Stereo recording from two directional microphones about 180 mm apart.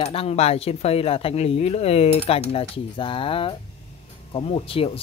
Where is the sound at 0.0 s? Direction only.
35° left (ahead or behind).